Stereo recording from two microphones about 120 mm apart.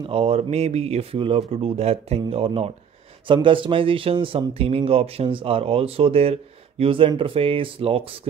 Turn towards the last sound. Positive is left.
turn(degrees=-50)  # may be behind; listen again after turning